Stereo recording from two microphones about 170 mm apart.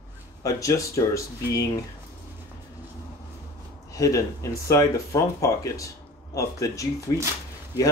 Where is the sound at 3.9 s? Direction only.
20° left (ahead or behind).